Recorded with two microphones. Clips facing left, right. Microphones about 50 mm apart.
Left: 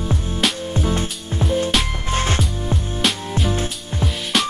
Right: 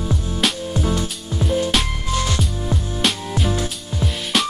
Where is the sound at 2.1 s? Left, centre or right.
Left.